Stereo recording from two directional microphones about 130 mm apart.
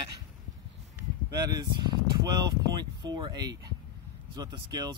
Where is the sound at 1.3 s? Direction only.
30° right (ahead or behind).